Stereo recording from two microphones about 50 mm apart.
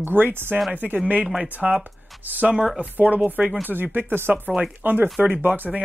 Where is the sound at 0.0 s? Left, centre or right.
Right.